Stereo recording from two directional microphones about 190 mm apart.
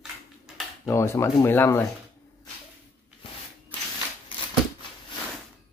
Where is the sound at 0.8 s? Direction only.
15° left (ahead or behind).